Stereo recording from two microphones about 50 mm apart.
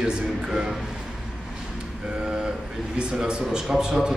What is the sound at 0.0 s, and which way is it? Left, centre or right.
Speech, centre.